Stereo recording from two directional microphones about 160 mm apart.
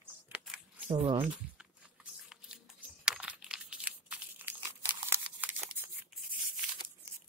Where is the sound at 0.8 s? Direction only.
50° right (ahead or behind).